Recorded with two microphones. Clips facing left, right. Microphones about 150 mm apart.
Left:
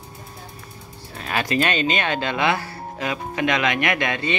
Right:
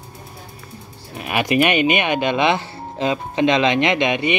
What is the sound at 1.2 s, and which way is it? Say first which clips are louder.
Speech: right 5 dB; 15° right (ahead or behind).